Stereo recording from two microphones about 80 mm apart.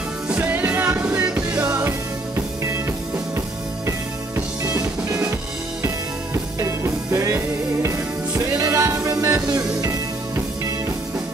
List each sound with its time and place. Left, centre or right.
0.3 s music: right
1.9 s music: right
4.6 s music: right
6.3 s music: right